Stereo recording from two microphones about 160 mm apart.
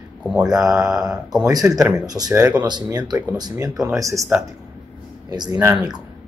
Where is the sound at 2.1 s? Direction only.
25° right (ahead or behind).